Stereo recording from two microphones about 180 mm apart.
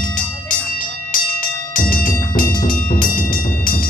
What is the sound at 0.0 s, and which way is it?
Music, 50° left (ahead or behind).